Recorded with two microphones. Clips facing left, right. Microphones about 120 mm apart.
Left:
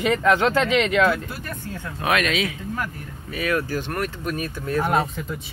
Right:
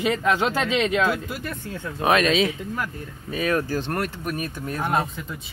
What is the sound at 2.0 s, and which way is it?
Speech, 25° right (ahead or behind).